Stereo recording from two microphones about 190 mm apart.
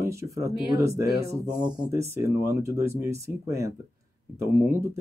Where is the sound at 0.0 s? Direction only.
15° right (ahead or behind).